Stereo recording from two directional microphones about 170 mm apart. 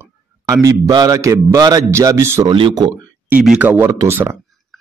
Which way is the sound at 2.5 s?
25° right (ahead or behind).